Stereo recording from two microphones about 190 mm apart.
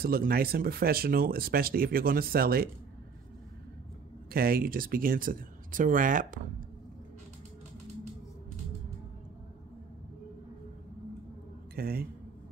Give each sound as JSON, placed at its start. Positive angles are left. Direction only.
{"t": 0.0, "sound": "speech", "side_deg": -50}
{"t": 4.3, "sound": "speech", "side_deg": -50}
{"t": 11.7, "sound": "speech", "side_deg": -50}